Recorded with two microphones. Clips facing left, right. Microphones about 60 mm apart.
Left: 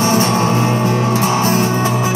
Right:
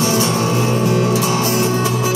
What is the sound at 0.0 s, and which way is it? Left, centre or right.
Music, left.